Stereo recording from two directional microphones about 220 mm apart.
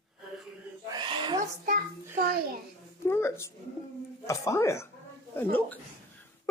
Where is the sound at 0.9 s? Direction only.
20° right (ahead or behind).